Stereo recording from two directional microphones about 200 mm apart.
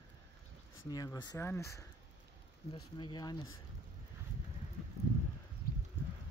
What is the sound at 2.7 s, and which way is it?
Speech, 25° left (ahead or behind).